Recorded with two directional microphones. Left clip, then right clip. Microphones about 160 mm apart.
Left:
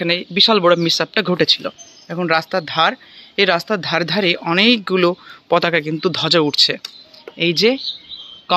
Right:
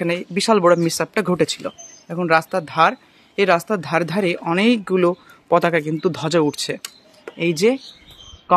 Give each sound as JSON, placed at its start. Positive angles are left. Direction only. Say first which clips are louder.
{"t": 0.0, "sound": "speech", "louder": "left 6 dB", "side_deg": -15}